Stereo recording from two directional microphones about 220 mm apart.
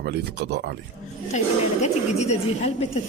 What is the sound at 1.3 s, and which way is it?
A woman's voice, 30° left (ahead or behind).